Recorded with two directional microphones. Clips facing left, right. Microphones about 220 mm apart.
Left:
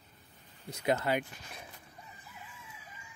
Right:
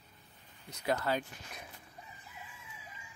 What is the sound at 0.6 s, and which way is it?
Speech, 20° left (ahead or behind).